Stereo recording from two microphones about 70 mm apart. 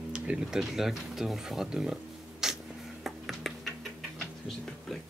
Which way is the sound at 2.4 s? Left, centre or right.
Centre.